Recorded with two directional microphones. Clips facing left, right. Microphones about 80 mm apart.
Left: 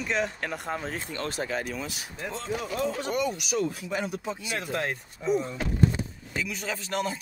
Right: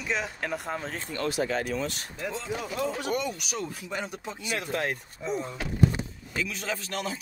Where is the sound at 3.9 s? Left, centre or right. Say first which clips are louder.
Left 4 dB; centre.